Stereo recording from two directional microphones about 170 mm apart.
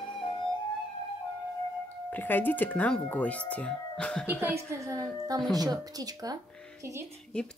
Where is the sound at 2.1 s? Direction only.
10° left (ahead or behind).